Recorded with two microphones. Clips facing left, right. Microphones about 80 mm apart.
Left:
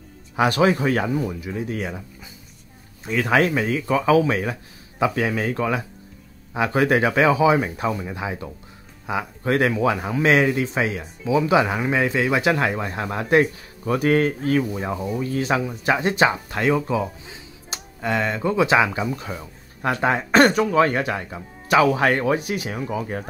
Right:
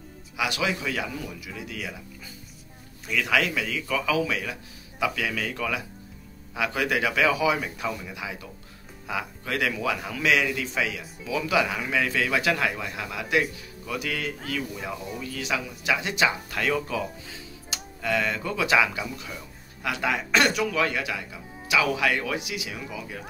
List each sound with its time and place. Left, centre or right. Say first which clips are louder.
0.4 s speech: left 9 dB; left
3.1 s speech: left 6 dB; left